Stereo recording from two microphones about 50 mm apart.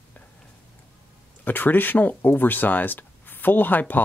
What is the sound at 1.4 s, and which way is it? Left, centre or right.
Speech, left.